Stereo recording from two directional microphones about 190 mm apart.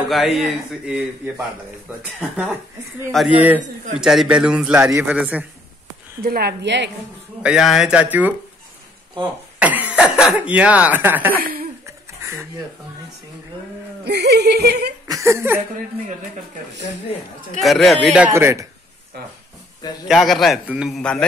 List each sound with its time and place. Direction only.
0.1 s a man's voice: centre (ahead or behind)
6.2 s speech: 55° right (ahead or behind)
7.4 s a man's voice: centre (ahead or behind)
11.8 s a sound: 15° right (ahead or behind)
14.0 s speech: 60° right (ahead or behind)
15.0 s speech: 15° right (ahead or behind)
17.6 s a man's voice: centre (ahead or behind)
20.1 s a man's voice: centre (ahead or behind)